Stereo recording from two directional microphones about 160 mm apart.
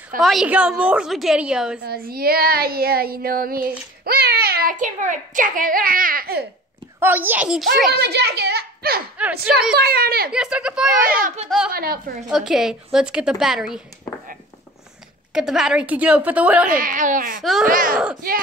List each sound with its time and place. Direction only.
0.2 s a woman's voice: centre (ahead or behind)
1.9 s speech: 70° right (ahead or behind)
7.0 s a woman's voice: 10° right (ahead or behind)
7.9 s a child's voice: 90° right
9.2 s a woman's voice: 10° right (ahead or behind)
9.8 s speech: 75° right (ahead or behind)
10.3 s a woman's voice: 5° right (ahead or behind)
11.7 s speech: 70° right (ahead or behind)
12.3 s a woman's voice: 5° right (ahead or behind)
15.3 s a woman's voice: centre (ahead or behind)
16.6 s a woman's voice: 60° right (ahead or behind)
17.4 s a woman's voice: centre (ahead or behind)
17.6 s a woman's voice: 60° right (ahead or behind)